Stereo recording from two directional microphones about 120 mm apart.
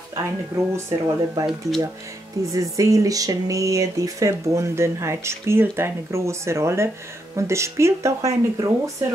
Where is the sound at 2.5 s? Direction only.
25° right (ahead or behind).